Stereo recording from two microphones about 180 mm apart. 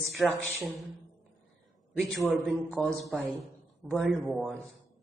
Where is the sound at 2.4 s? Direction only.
Centre (ahead or behind).